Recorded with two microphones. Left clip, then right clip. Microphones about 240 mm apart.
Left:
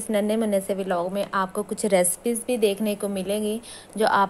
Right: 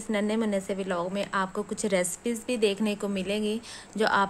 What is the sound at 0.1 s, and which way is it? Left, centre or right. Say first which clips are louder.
Speech: left 5 dB; centre.